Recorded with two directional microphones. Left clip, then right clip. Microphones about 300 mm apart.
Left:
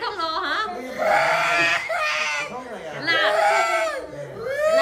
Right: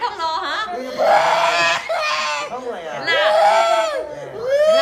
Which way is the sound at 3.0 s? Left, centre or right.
Centre.